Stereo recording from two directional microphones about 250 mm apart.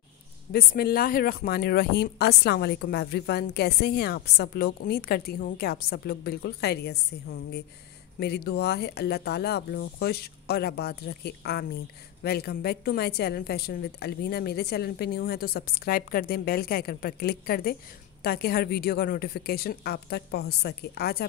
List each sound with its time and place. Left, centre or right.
0.5 s speech: left